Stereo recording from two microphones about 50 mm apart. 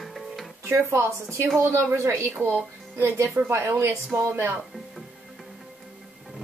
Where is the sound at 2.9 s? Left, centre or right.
Right.